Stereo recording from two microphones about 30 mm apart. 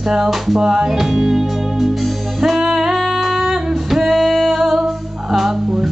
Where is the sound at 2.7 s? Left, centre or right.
Right.